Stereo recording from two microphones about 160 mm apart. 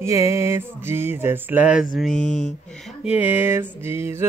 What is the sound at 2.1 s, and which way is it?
Speech, 50° left (ahead or behind).